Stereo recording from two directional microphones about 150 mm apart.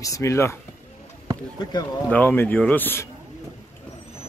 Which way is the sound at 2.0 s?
10° left (ahead or behind).